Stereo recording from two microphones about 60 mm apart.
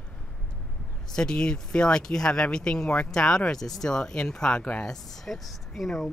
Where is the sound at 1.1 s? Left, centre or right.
Centre.